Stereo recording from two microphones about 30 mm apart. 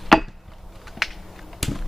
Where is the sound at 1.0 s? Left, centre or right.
Centre.